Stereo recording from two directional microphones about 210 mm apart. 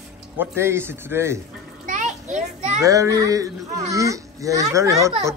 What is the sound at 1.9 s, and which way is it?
Children playing, 35° right (ahead or behind).